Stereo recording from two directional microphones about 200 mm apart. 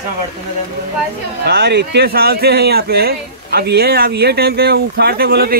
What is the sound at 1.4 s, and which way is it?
Speech, 55° right (ahead or behind).